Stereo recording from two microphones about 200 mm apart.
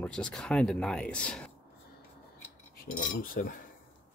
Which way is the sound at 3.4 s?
45° left (ahead or behind).